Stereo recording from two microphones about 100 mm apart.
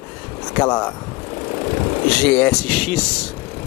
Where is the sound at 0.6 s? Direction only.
35° left (ahead or behind).